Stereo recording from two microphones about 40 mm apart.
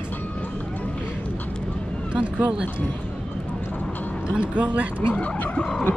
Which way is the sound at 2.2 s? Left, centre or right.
Right.